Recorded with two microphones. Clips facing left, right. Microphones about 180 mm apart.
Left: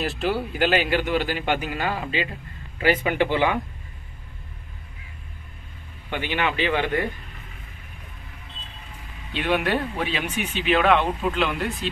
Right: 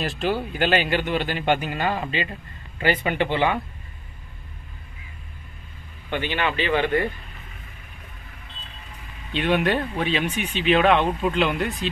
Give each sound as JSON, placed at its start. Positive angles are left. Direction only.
{"t": 0.0, "sound": "speech", "side_deg": 5}
{"t": 6.0, "sound": "speech", "side_deg": 10}
{"t": 9.3, "sound": "speech", "side_deg": 10}